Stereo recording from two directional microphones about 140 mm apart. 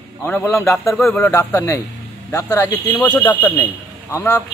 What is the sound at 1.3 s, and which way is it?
Speech, 20° left (ahead or behind).